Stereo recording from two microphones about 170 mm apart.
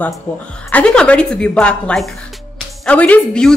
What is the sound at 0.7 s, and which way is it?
A woman's voice, 5° left (ahead or behind).